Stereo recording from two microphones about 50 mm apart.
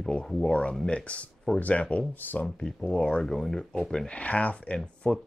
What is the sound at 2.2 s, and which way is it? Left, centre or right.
Speech, left.